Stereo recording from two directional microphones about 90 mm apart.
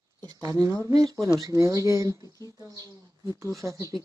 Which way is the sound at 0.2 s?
40° right (ahead or behind).